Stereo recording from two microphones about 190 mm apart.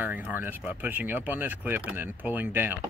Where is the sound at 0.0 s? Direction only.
10° right (ahead or behind).